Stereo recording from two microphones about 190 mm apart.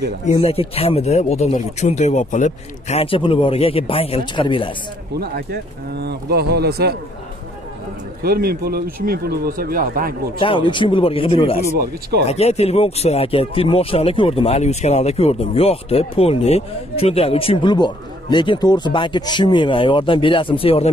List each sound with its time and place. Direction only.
0.2 s speech: 30° left (ahead or behind)
5.2 s speech: 55° right (ahead or behind)
8.2 s speech: 55° right (ahead or behind)
10.4 s speech: 25° left (ahead or behind)